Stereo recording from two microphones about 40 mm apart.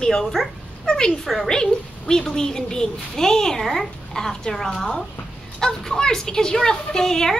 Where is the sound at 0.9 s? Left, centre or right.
Centre.